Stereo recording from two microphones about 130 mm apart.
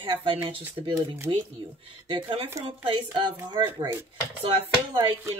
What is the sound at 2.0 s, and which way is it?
A woman's voice, 40° right (ahead or behind).